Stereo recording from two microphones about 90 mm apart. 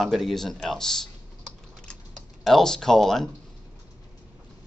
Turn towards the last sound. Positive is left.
turn(degrees=5)  # may be behind; listen again after turning